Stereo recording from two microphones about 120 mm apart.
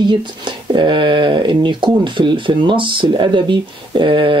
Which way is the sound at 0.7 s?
40° right (ahead or behind).